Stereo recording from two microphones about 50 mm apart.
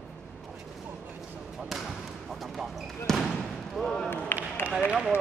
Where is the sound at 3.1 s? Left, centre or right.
Centre.